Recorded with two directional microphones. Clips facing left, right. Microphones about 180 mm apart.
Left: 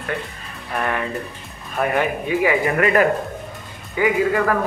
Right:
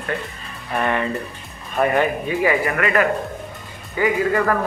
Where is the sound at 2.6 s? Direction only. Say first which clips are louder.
Left 2 dB; 25° left (ahead or behind).